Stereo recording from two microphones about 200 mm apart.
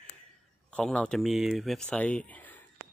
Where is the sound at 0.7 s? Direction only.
5° left (ahead or behind).